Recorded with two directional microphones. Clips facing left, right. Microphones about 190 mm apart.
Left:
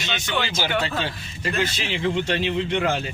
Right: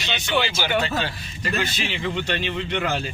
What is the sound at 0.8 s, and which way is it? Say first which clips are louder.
A man's voice: right 1 dB; 30° left (ahead or behind).